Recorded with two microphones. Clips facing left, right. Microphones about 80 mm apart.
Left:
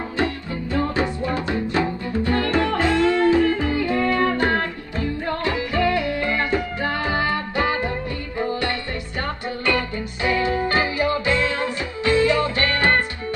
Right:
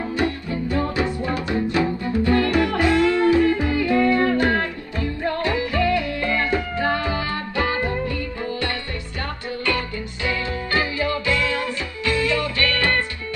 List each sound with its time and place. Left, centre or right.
0.2 s music: left